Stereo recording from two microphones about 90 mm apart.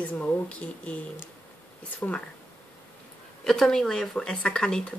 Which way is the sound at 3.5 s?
5° left (ahead or behind).